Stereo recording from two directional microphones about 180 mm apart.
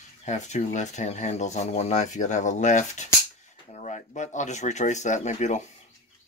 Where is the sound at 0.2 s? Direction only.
40° left (ahead or behind).